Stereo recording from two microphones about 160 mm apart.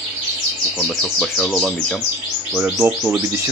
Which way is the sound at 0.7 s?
5° left (ahead or behind).